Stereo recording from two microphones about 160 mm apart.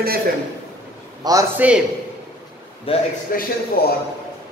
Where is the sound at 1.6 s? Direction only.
10° right (ahead or behind).